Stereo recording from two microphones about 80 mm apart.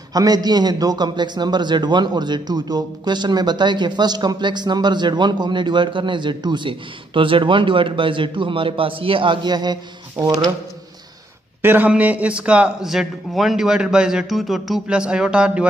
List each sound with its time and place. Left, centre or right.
0.1 s a man's voice: right
10.1 s speech: right
11.6 s a man's voice: right; by 14.8 s centre
14.9 s speech: centre